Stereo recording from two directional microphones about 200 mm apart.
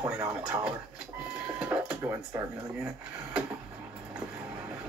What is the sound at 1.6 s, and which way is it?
Cash register, 10° right (ahead or behind).